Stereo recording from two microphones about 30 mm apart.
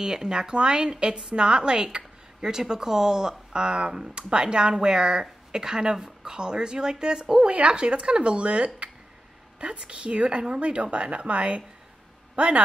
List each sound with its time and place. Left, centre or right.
0.0 s a woman's voice: right
2.4 s speech: right
7.4 s a woman's voice: right